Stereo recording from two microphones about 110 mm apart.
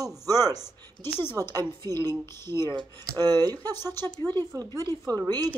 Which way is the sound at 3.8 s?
20° left (ahead or behind).